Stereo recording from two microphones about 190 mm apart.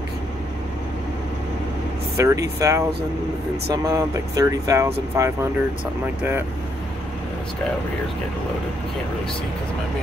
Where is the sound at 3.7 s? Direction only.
15° right (ahead or behind).